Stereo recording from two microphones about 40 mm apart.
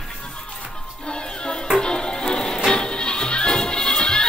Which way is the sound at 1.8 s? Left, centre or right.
Left.